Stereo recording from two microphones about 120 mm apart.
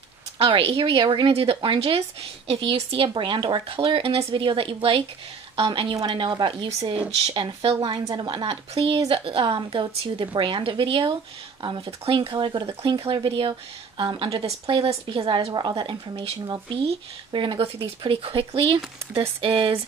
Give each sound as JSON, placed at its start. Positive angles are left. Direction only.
{"t": 0.4, "sound": "a woman's voice", "side_deg": -50}
{"t": 3.2, "sound": "a woman's voice", "side_deg": -40}
{"t": 12.6, "sound": "a woman's voice", "side_deg": -55}
{"t": 16.7, "sound": "a woman's voice", "side_deg": -50}